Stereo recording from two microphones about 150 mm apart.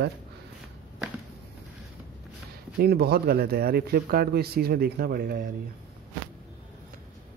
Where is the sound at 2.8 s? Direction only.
90° right; by 5.5 s 75° right (ahead or behind).